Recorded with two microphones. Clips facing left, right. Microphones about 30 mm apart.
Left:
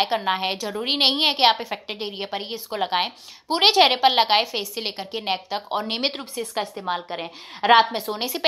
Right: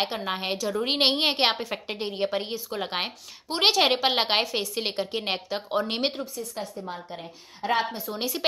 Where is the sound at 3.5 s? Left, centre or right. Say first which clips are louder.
Left 5 dB; left.